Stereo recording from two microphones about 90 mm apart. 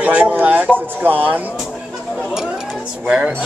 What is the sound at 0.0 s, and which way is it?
Speech, 15° right (ahead or behind).